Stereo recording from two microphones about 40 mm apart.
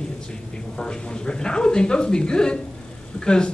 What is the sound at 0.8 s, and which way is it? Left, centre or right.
A man's voice, left.